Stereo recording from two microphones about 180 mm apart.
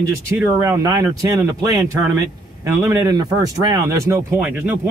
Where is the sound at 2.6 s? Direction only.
15° right (ahead or behind).